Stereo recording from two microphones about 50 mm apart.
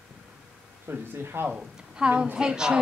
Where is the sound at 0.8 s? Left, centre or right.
Right.